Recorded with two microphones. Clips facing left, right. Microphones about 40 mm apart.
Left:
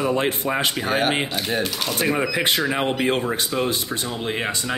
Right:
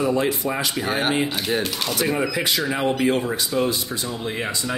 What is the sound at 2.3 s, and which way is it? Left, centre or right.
A man's voice, left.